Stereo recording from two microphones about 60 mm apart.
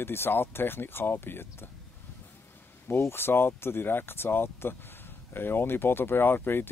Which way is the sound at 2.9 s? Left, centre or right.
Left.